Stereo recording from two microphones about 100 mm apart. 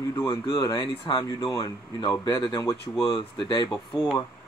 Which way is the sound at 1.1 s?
50° left (ahead or behind).